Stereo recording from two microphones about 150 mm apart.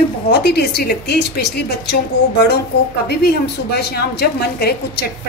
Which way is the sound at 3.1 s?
90° left.